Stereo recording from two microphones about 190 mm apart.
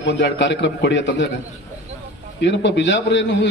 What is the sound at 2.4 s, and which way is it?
A man's voice, 65° left (ahead or behind).